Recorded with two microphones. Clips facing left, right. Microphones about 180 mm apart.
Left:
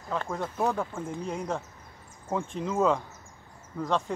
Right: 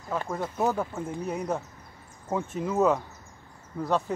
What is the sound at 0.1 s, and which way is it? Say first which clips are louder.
Speech: right 1 dB; 5° right (ahead or behind).